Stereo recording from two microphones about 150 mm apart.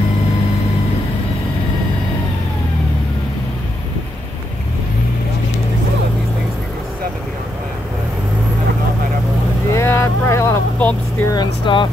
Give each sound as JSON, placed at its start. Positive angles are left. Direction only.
{"t": 9.7, "sound": "vehicle", "side_deg": 20}
{"t": 11.3, "sound": "vehicle", "side_deg": 30}